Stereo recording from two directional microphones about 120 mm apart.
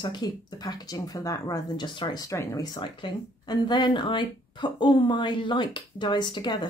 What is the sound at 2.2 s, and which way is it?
Speech, 25° left (ahead or behind).